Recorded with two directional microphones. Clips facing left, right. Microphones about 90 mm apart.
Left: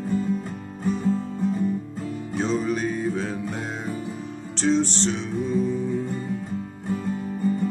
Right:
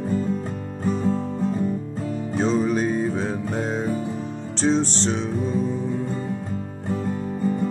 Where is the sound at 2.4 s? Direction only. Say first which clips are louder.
Right 3 dB; 35° right (ahead or behind).